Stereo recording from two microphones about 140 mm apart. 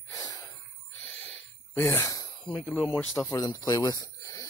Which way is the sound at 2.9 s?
15° left (ahead or behind).